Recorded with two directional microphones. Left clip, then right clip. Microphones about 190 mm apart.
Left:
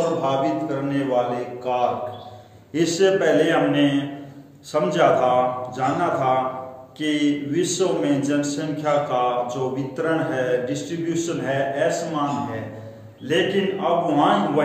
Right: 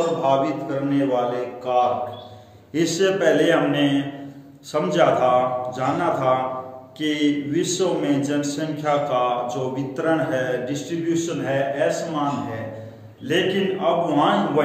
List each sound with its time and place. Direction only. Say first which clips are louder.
0.2 s a man's voice: right 2 dB; 20° left (ahead or behind)
2.7 s a man's voice: left 2 dB; 5° right (ahead or behind)